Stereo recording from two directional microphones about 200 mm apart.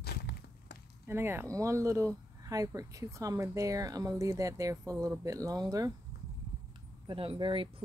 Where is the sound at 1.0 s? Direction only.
10° right (ahead or behind).